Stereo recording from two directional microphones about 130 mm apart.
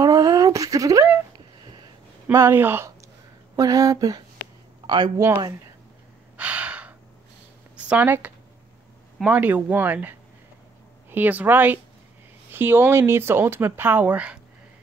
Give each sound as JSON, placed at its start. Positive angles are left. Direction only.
{"t": 0.0, "sound": "a sound", "side_deg": -30}
{"t": 2.3, "sound": "speech", "side_deg": -15}
{"t": 5.1, "sound": "speech", "side_deg": -25}
{"t": 6.3, "sound": "gasp", "side_deg": -10}
{"t": 7.7, "sound": "speech", "side_deg": -10}